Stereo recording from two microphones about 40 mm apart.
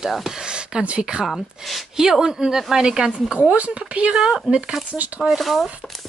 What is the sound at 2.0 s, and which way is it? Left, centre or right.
Speech, centre.